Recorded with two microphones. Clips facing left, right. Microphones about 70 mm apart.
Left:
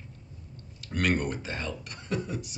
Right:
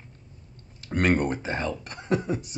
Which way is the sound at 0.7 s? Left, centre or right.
Right.